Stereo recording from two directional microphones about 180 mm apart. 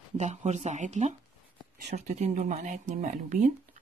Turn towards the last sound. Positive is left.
turn(degrees=-45)  # may be behind; listen again after turning